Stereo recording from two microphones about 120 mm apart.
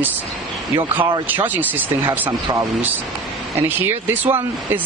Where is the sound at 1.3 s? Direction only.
15° right (ahead or behind).